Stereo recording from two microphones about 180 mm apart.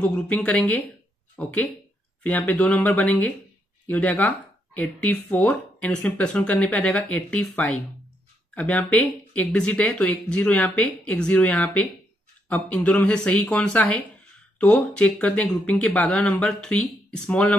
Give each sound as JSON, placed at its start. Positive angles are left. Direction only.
{"t": 0.0, "sound": "speech", "side_deg": 5}